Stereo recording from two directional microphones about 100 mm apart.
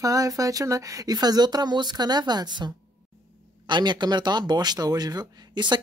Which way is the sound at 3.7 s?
45° right (ahead or behind).